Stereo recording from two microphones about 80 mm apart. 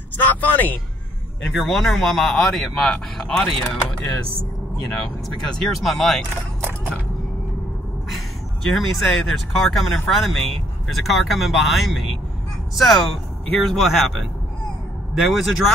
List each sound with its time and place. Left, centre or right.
0.2 s speech: left
1.5 s speech: centre
4.9 s speech: centre
8.6 s speech: centre